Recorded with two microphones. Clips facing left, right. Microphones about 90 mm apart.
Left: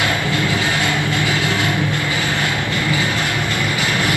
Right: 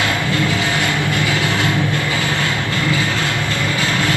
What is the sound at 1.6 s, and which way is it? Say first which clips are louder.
Vehicle: right 1 dB; 20° left (ahead or behind).